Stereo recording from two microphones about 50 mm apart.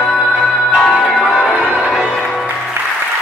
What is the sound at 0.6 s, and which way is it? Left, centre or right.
Music, left.